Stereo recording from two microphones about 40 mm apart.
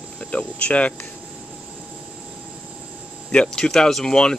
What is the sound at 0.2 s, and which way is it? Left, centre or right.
Speech, left.